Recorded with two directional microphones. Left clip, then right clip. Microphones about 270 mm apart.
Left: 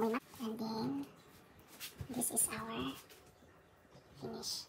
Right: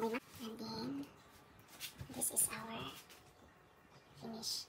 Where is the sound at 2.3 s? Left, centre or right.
Centre.